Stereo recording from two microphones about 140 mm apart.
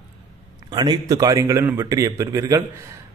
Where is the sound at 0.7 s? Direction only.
30° right (ahead or behind).